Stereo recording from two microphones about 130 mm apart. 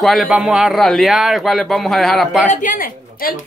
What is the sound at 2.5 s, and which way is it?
Speech, 90° left.